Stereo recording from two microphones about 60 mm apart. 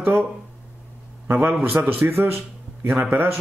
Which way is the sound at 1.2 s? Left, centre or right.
Right.